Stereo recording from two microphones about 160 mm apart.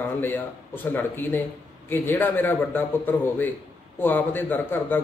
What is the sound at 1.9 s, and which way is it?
Speech, 10° left (ahead or behind).